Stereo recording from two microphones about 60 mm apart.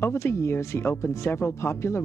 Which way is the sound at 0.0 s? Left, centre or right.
Left.